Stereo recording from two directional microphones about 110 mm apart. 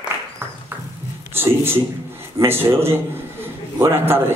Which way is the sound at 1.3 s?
20° right (ahead or behind).